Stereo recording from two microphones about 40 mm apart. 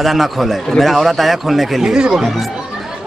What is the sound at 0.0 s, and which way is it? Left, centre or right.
Speech, centre.